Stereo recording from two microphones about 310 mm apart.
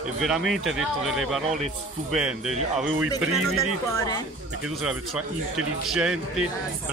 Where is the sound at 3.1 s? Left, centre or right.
Centre.